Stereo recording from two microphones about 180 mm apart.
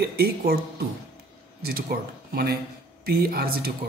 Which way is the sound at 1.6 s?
55° right (ahead or behind).